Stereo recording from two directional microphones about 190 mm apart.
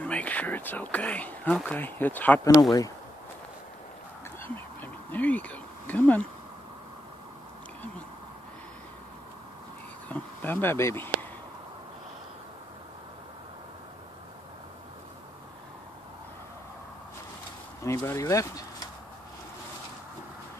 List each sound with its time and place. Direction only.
0.0 s speech: 5° left (ahead or behind)
5.1 s speech: 10° left (ahead or behind)
10.0 s a sound: 10° left (ahead or behind)
17.8 s speech: 15° left (ahead or behind)